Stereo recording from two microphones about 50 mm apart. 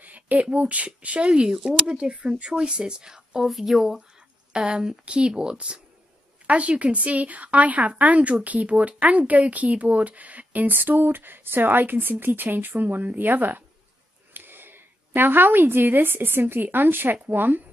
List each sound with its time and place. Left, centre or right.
0.0 s speech: right; by 4.0 s centre
4.5 s speech: centre; by 17.6 s right